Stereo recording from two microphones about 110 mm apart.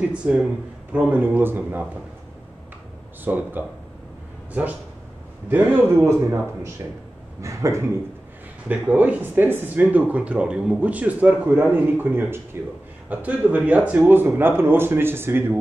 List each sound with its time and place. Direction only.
0.0 s speech: 10° right (ahead or behind)
3.3 s speech: 15° right (ahead or behind)
5.5 s speech: 15° right (ahead or behind)
7.4 s speech: 25° right (ahead or behind)
8.6 s speech: 15° right (ahead or behind)